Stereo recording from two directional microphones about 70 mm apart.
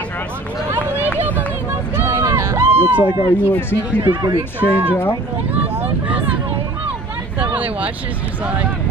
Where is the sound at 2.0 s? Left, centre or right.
Right.